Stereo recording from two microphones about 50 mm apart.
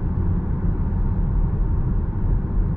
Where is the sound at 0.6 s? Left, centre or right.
Centre.